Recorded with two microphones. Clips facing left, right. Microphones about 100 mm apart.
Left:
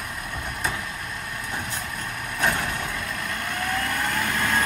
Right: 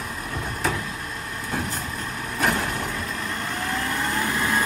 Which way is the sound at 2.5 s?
35° right (ahead or behind).